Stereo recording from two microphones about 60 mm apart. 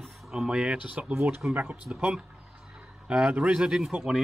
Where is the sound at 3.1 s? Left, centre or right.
Centre.